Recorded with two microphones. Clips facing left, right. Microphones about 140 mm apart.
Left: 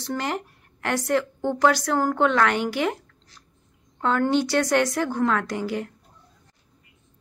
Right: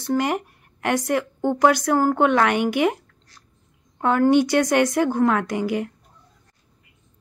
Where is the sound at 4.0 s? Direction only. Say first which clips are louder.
Right 5 dB; 15° right (ahead or behind).